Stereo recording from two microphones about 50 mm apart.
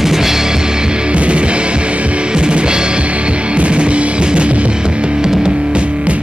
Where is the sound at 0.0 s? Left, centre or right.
Centre.